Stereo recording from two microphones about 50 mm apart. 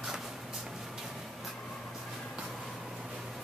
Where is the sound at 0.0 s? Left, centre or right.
Centre.